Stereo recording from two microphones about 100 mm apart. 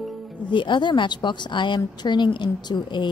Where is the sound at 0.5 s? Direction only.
55° left (ahead or behind).